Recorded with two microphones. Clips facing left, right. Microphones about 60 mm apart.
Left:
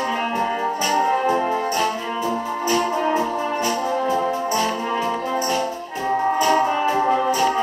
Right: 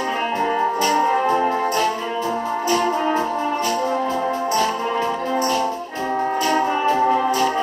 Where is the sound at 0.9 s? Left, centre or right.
Centre.